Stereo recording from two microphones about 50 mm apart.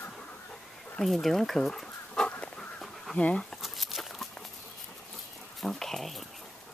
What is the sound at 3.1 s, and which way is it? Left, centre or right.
Speech, left.